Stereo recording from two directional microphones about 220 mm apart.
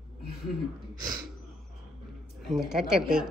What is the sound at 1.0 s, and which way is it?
Gasp, 15° right (ahead or behind).